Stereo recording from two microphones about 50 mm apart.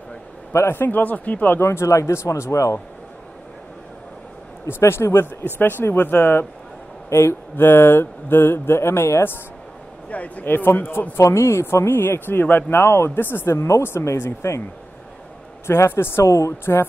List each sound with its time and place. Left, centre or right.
0.5 s a man's voice: left
0.7 s speech: left
1.6 s speech: left
4.6 s speech: left
7.1 s speech: left
7.5 s speech: left
10.0 s speech: left
10.4 s speech: left
13.5 s speech: left
13.8 s speech: left
15.6 s speech: left
16.3 s speech: left